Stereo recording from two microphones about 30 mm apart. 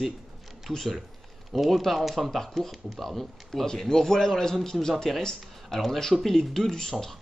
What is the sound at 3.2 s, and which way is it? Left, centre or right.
A man's voice, centre.